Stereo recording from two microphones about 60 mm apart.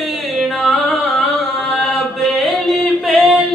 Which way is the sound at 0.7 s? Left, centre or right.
Centre.